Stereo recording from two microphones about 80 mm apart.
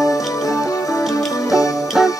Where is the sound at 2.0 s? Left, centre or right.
Centre.